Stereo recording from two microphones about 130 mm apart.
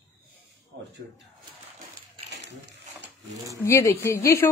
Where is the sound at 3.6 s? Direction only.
20° left (ahead or behind).